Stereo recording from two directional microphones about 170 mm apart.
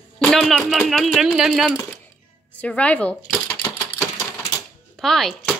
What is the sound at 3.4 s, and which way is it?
Typewriter, 15° left (ahead or behind).